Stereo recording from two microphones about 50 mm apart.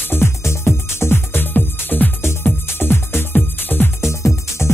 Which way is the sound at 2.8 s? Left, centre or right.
Left.